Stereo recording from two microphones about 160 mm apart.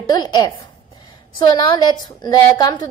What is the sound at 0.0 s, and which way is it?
Speech, 25° left (ahead or behind).